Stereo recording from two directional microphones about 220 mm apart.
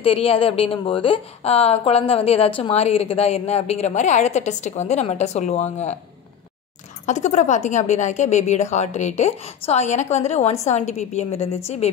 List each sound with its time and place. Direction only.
0.0 s a woman's voice: 25° left (ahead or behind)
7.1 s speech: 30° left (ahead or behind)